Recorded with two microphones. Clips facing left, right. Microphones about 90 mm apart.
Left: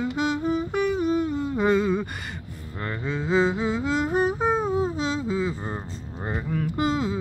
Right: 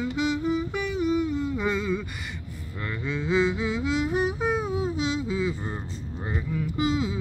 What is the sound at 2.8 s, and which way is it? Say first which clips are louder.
Humming: left 1 dB; 35° left (ahead or behind).